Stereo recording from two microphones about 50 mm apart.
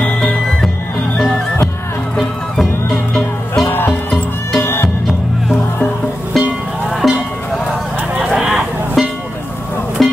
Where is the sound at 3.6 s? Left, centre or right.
Left.